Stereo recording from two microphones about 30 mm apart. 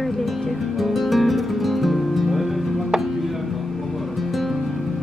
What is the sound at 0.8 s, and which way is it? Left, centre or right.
Music, centre.